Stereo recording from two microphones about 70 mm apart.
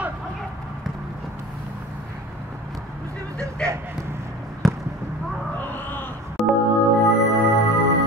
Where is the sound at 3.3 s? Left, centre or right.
Centre.